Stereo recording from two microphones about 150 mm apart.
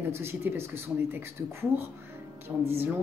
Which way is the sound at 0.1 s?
15° right (ahead or behind).